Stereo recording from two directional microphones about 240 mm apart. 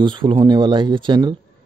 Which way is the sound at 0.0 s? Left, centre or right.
Centre.